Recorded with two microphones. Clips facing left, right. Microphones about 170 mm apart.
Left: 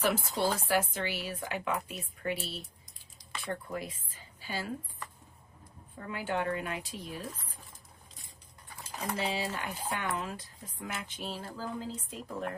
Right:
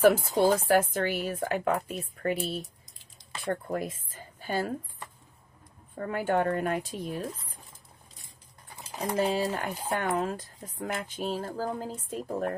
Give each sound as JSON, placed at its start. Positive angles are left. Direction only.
{"t": 0.0, "sound": "speech", "side_deg": -45}
{"t": 3.4, "sound": "speech", "side_deg": -50}
{"t": 5.9, "sound": "speech", "side_deg": -50}
{"t": 9.1, "sound": "speech", "side_deg": -45}